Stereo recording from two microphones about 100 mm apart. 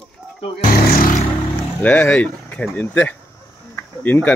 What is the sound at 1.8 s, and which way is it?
Speech, 15° left (ahead or behind).